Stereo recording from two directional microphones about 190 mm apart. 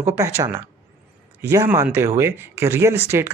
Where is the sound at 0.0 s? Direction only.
15° right (ahead or behind).